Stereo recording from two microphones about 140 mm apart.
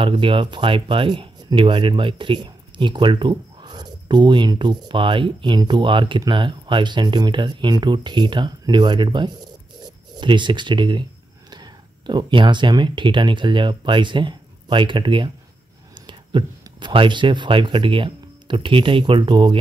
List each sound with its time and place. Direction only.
0.0 s speech: 40° right (ahead or behind)